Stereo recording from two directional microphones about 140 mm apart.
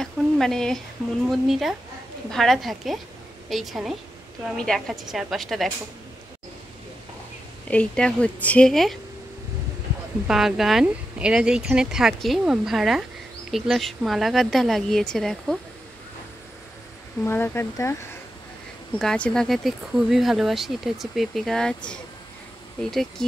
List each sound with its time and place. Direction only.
0.0 s speech: 5° left (ahead or behind)
7.7 s a woman's voice: 10° left (ahead or behind)
10.2 s speech: 5° right (ahead or behind)
17.2 s a woman's voice: 15° left (ahead or behind)
18.9 s speech: 5° left (ahead or behind)